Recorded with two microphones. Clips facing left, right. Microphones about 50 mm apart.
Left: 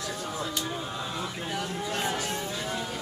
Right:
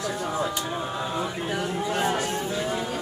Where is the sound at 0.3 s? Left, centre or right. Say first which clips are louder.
Right 4 dB; right.